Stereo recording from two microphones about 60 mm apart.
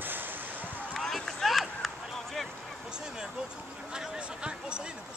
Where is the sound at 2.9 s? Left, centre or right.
Centre.